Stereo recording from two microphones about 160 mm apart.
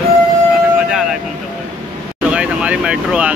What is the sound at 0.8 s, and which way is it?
Speech, 5° right (ahead or behind).